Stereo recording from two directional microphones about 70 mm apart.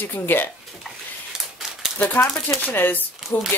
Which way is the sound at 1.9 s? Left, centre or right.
Left.